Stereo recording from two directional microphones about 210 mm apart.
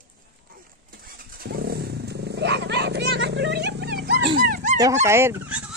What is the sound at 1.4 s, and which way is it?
Vehicle, 50° right (ahead or behind).